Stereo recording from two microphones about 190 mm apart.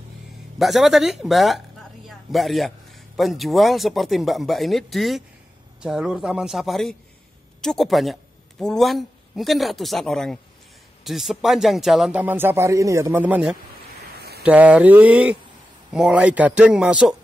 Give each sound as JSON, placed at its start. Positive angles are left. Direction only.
{"t": 0.6, "sound": "a man's voice", "side_deg": 0}
{"t": 14.1, "sound": "a sound", "side_deg": -55}
{"t": 14.4, "sound": "a man's voice", "side_deg": -5}